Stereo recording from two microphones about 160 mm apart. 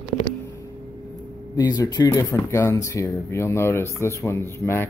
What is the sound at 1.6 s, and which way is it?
Speech, 25° left (ahead or behind).